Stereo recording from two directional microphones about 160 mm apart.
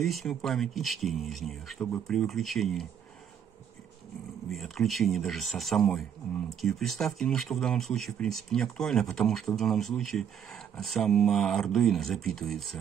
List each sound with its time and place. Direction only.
0.0 s speech: centre (ahead or behind)
4.5 s speech: centre (ahead or behind)